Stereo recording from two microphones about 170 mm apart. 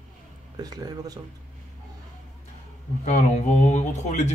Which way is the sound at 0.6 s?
25° right (ahead or behind).